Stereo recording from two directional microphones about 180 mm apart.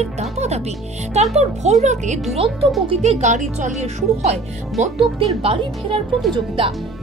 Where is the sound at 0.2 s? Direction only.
35° right (ahead or behind).